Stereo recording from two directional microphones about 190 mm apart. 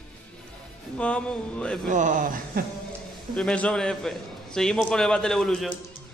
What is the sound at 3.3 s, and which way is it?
A man's voice, 5° left (ahead or behind).